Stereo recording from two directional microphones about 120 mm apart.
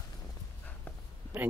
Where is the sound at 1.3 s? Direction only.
15° right (ahead or behind).